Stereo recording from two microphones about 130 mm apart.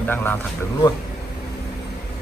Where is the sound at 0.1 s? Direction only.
15° left (ahead or behind).